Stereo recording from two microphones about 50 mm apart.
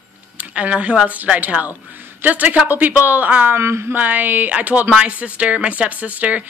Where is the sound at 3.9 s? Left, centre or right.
Right.